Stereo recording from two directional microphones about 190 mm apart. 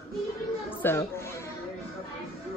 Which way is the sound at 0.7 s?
10° left (ahead or behind).